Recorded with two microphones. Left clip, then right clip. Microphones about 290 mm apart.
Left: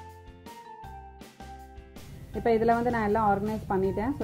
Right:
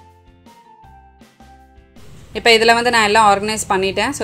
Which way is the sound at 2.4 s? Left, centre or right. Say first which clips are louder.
Right 12 dB; right.